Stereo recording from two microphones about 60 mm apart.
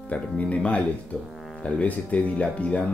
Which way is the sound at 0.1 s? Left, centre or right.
Left.